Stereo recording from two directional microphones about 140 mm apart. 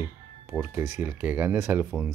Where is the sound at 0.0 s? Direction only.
10° right (ahead or behind).